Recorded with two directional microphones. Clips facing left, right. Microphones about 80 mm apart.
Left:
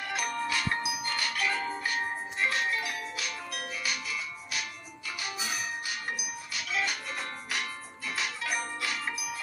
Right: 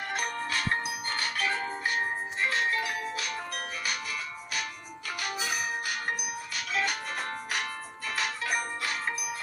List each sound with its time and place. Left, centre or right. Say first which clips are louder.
0.1 s music: left 1 dB; right